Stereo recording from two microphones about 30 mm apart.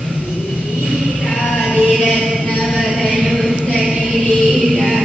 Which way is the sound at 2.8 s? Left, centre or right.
Centre.